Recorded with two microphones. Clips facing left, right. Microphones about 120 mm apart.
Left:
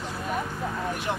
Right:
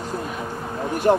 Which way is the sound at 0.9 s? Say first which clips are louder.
Right 12 dB; 45° right (ahead or behind).